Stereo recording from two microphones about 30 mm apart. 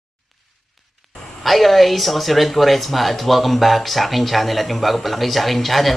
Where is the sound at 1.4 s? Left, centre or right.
Centre.